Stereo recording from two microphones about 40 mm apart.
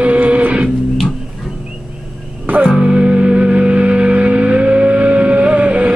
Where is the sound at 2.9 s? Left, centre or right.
Right.